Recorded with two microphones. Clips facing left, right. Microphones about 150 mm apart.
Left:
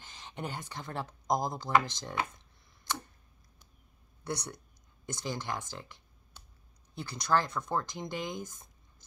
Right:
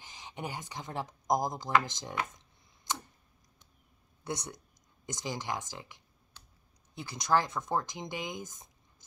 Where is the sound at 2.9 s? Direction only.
15° right (ahead or behind).